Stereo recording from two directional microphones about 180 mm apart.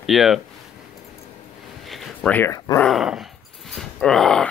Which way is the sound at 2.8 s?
Centre (ahead or behind).